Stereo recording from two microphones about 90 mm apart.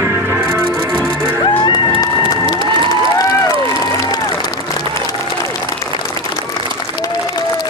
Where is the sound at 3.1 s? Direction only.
40° left (ahead or behind).